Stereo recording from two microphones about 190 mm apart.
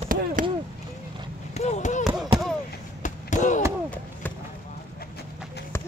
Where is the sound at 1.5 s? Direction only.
35° left (ahead or behind).